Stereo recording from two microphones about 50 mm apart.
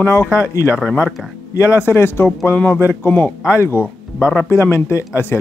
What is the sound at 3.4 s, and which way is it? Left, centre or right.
Speech, left.